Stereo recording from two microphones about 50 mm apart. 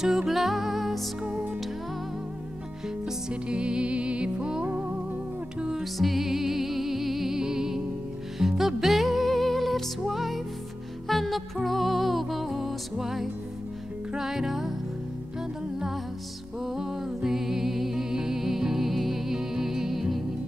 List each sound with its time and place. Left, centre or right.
0.0 s music: centre
3.1 s music: centre
16.6 s music: centre